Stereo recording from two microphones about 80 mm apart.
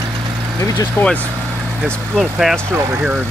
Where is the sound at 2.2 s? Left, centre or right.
Centre.